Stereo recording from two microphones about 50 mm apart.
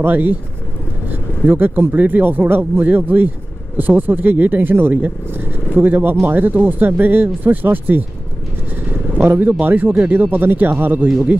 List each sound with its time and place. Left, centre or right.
0.0 s speech: right
1.5 s speech: right
9.2 s speech: right